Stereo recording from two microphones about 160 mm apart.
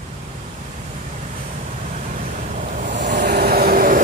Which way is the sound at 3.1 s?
85° right.